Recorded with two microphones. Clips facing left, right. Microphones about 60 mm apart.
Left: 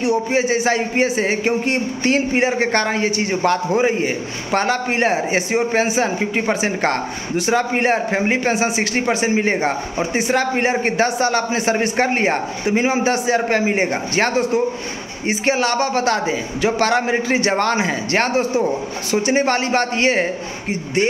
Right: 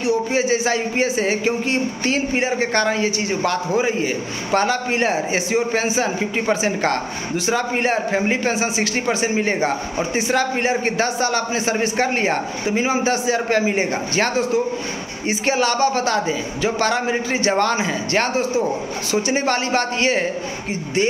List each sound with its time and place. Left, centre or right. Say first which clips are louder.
0.0 s a man's voice: left 1 dB; left
8.5 s a man's voice: left 2 dB; left
9.4 s a man's voice: left 1 dB; left
10.1 s a man's voice: left 2 dB; left
12.1 s a man's voice: left 2 dB; left